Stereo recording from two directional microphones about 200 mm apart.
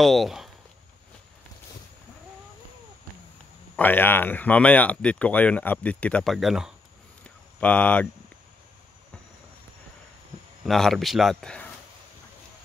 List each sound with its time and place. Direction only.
0.0 s speech: centre (ahead or behind)
3.7 s speech: 10° left (ahead or behind)
10.6 s speech: centre (ahead or behind)